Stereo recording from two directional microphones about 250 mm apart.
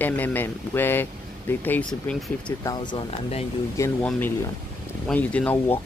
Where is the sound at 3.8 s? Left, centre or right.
Centre.